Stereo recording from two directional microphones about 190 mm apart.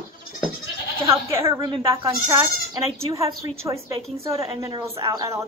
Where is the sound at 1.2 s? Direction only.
15° right (ahead or behind).